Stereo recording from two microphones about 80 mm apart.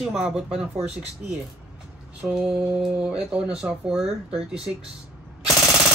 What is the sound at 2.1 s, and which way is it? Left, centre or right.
Speech, centre.